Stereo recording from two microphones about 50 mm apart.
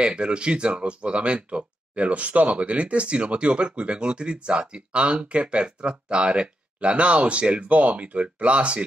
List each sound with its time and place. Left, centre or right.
0.0 s speech: right